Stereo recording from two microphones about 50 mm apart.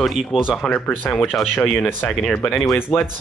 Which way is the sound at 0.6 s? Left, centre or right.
Left.